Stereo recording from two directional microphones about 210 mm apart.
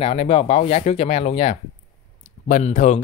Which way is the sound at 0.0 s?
30° left (ahead or behind).